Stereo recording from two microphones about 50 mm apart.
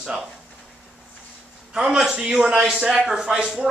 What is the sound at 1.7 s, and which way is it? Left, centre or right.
A man's voice, centre.